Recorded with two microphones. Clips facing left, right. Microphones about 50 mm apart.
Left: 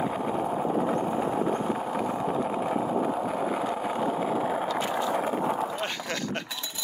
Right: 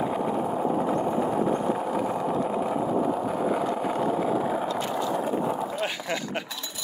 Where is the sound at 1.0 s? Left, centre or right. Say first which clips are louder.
Right 2 dB; centre.